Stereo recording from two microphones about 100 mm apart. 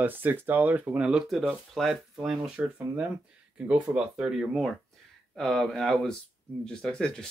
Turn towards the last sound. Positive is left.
turn(degrees=10)  # may be behind; listen again after turning